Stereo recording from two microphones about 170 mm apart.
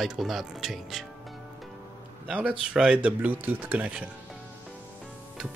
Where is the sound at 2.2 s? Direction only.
5° right (ahead or behind).